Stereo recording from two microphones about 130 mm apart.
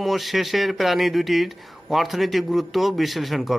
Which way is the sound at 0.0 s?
Centre (ahead or behind).